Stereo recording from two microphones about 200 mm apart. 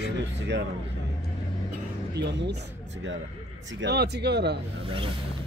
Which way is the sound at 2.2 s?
60° right (ahead or behind).